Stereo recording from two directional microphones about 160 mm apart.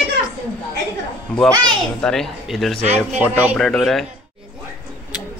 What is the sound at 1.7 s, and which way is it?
A child's voice, 5° left (ahead or behind).